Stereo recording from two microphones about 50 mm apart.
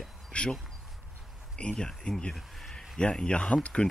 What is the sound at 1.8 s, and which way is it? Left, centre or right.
Speech, centre.